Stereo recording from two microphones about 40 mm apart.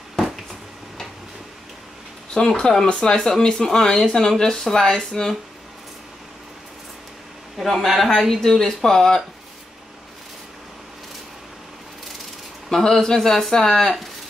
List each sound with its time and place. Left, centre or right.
2.3 s speech: left
3.2 s speech: centre
7.5 s speech: centre
12.6 s speech: centre